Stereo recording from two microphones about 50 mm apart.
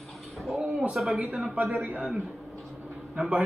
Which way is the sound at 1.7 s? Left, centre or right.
Right.